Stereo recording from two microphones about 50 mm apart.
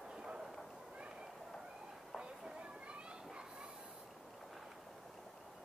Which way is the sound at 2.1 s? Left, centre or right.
Centre.